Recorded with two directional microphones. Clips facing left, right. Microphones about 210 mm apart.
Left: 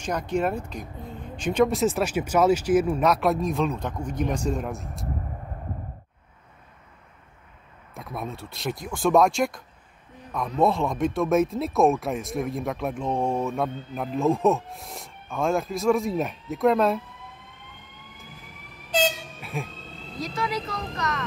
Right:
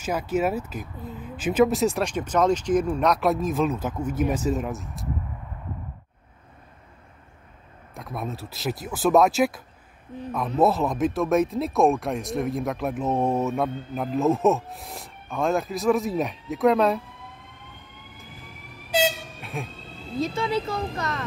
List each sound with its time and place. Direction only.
0.0 s speech: 5° right (ahead or behind)
7.9 s speech: centre (ahead or behind)
10.6 s speech: 5° right (ahead or behind)
18.9 s air horn: 10° right (ahead or behind)
20.2 s speech: 25° right (ahead or behind)